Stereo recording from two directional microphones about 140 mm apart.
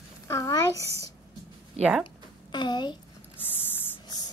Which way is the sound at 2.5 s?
30° left (ahead or behind).